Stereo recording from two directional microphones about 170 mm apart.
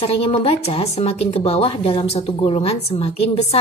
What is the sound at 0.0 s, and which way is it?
Speech, 35° left (ahead or behind).